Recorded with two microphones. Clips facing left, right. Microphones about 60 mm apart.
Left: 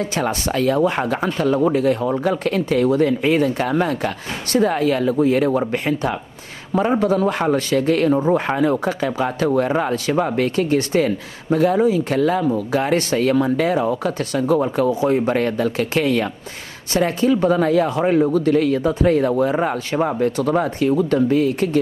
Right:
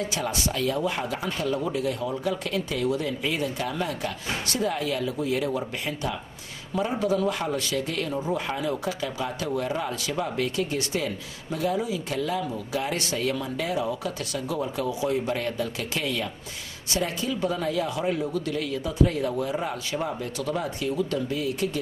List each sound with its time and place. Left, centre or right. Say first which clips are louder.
0.1 s speech: left 7 dB; left